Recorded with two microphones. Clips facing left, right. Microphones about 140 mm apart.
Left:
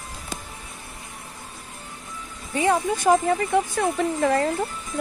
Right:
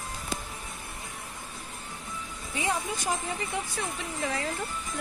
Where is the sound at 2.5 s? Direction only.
55° left (ahead or behind).